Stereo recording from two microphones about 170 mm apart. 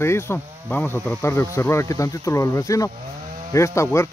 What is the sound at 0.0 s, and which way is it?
Speech, 15° left (ahead or behind).